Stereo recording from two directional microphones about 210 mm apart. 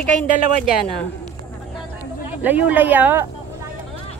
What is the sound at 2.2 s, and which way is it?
Speech, 10° right (ahead or behind).